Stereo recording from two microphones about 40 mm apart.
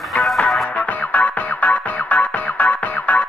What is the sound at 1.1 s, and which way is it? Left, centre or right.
Music, left.